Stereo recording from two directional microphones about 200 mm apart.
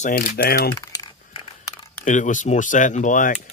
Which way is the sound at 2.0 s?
40° left (ahead or behind).